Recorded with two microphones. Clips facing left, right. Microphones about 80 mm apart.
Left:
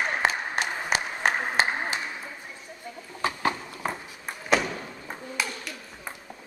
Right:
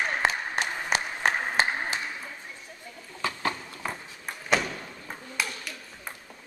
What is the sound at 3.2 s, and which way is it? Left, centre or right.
Horse, left.